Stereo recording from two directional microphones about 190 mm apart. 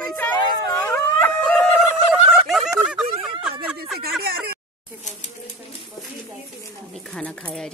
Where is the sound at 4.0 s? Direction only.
55° right (ahead or behind).